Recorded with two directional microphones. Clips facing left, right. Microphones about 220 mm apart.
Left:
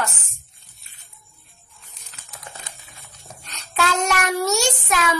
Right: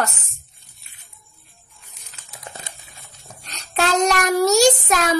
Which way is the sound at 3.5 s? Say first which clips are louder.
Right 3 dB; 35° right (ahead or behind).